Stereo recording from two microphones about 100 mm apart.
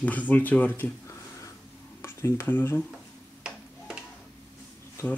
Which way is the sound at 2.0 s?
30° left (ahead or behind).